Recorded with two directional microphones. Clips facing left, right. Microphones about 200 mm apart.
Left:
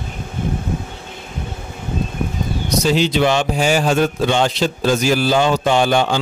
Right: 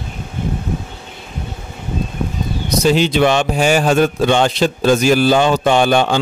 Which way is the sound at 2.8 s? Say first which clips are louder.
Right 3 dB; 55° right (ahead or behind).